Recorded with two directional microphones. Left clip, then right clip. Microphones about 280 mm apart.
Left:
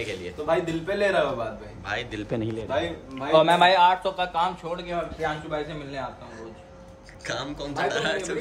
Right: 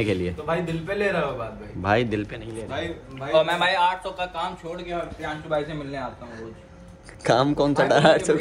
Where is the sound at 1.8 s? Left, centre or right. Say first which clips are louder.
Right 9 dB; centre.